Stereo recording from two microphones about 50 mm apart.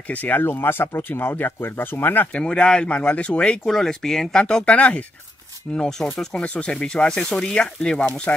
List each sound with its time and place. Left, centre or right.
0.1 s speech: left
0.4 s speech: left
2.3 s speech: centre
5.7 s speech: centre
6.3 s speech: left